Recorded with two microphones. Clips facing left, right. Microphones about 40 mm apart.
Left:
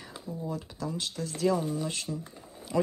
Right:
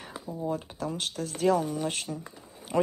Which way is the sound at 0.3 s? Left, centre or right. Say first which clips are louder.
Right 4 dB; right.